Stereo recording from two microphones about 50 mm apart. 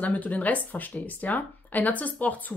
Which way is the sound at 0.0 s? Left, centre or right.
Left.